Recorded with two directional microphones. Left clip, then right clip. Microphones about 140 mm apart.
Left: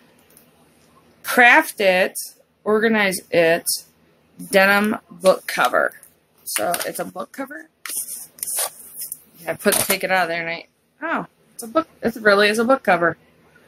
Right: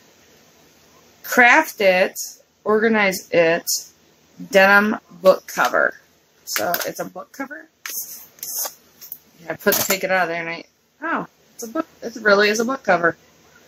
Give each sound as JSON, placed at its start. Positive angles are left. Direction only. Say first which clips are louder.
{"t": 1.2, "sound": "speech", "louder": "even", "side_deg": 10}
{"t": 9.8, "sound": "speech", "louder": "even", "side_deg": 15}